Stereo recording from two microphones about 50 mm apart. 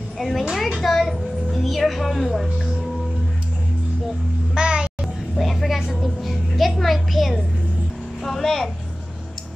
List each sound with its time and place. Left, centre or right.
0.2 s a woman's voice: centre
4.6 s music: centre
5.3 s a sound: centre